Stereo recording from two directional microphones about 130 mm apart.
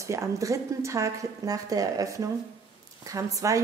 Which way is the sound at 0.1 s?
25° right (ahead or behind).